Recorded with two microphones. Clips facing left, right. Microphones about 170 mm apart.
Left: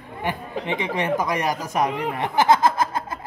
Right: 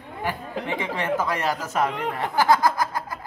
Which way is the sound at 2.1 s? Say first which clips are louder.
Left 2 dB; 20° left (ahead or behind).